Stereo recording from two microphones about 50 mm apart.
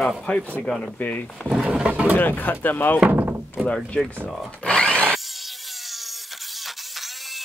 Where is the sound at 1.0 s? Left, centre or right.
Left.